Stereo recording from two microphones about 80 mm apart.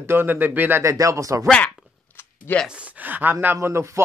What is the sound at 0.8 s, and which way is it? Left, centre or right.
Speech, right.